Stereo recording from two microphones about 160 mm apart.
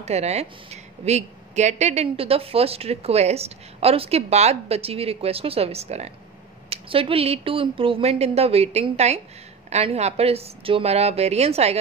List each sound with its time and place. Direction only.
0.0 s a woman's voice: 40° right (ahead or behind)